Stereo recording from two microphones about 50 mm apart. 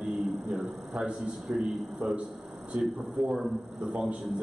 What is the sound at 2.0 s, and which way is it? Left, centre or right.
Speech, right.